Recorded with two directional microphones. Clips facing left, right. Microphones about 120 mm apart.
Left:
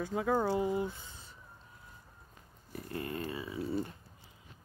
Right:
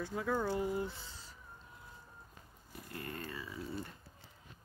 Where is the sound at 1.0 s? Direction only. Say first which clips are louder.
Even; 20° left (ahead or behind).